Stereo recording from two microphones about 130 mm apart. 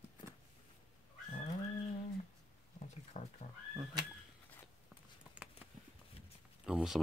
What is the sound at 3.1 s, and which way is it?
Speech, 60° left (ahead or behind).